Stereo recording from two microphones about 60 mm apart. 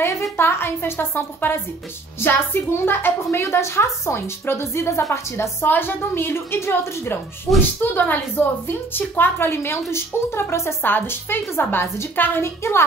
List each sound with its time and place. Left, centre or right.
0.4 s a woman's voice: left
5.7 s a woman's voice: left
7.8 s a woman's voice: left
10.8 s a woman's voice: left